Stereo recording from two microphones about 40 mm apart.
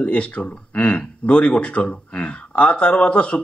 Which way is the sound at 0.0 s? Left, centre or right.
Left.